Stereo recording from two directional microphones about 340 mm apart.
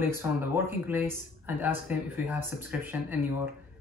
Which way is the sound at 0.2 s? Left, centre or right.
Centre.